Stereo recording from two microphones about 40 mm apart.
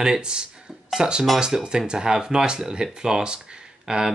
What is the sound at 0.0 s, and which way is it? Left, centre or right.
Speech, centre.